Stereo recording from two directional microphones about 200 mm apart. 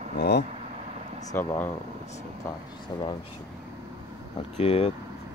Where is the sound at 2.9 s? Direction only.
20° left (ahead or behind).